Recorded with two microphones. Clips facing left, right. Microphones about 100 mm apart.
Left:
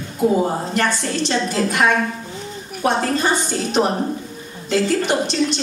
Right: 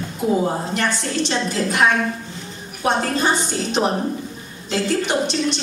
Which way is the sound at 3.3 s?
45° left (ahead or behind).